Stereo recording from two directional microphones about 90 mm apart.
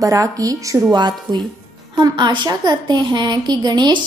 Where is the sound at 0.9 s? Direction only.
50° right (ahead or behind).